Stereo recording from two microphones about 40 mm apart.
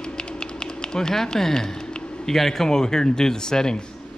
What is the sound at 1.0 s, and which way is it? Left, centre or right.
A man's voice, centre.